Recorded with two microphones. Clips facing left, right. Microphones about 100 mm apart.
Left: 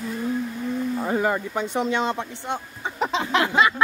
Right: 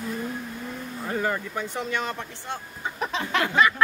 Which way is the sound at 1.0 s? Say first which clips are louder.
Left 1 dB; 20° left (ahead or behind).